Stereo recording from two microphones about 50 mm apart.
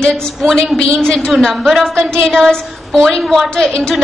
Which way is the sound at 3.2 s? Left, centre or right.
Centre.